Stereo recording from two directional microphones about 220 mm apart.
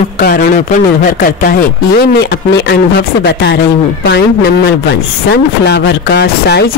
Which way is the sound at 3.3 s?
50° left (ahead or behind).